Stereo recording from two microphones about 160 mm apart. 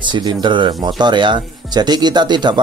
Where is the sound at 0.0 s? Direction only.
30° right (ahead or behind).